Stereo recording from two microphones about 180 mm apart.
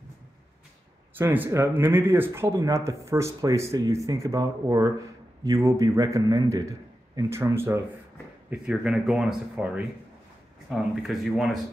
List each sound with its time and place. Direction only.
1.1 s speech: 10° right (ahead or behind)